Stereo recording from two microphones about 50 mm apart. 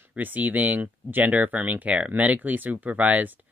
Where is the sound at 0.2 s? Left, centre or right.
Right.